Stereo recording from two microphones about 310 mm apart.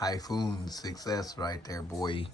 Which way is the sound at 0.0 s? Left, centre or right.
Centre.